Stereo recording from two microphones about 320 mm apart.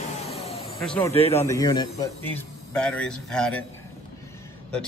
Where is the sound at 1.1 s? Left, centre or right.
Centre.